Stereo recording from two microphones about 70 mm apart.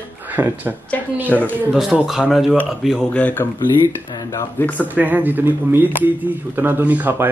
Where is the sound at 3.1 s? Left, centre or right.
Left.